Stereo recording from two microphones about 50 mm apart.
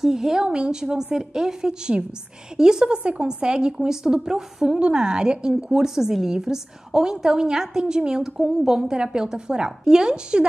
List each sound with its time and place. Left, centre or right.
0.0 s a woman's voice: centre